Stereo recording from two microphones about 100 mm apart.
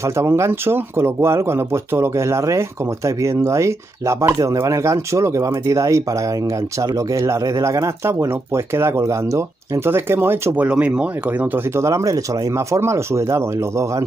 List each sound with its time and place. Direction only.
0.0 s speech: 25° right (ahead or behind)
11.7 s speech: 30° right (ahead or behind)